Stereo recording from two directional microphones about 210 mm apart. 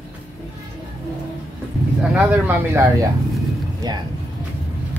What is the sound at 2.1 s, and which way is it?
Speech, 10° right (ahead or behind).